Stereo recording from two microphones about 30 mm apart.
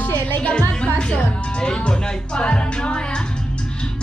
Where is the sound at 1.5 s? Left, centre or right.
Left.